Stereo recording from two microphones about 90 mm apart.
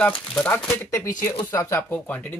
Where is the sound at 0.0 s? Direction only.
10° left (ahead or behind).